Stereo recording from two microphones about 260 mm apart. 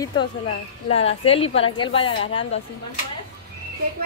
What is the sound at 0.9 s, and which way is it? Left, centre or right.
A woman's voice, left.